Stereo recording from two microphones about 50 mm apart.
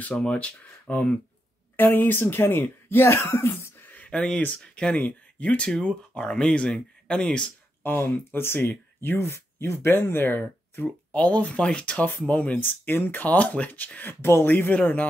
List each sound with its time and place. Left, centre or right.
0.2 s speech: left
1.8 s speech: left
3.8 s a sound: left
4.1 s speech: centre
4.9 s speech: left
7.8 s speech: left
8.5 s speech: left
9.2 s speech: left
11.1 s speech: left